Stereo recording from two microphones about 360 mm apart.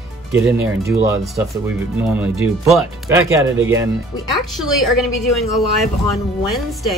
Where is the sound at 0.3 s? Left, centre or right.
Centre.